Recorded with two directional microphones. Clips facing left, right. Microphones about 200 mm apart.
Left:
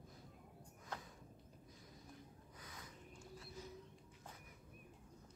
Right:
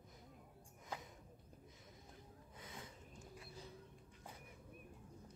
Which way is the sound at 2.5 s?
25° right (ahead or behind).